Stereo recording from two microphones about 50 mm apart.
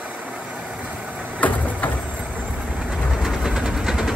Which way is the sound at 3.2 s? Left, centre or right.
Centre.